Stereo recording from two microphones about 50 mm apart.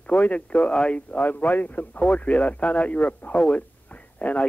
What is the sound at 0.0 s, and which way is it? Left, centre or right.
A man's voice, left.